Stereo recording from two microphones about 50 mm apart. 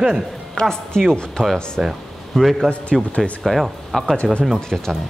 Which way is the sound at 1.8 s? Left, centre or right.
Centre.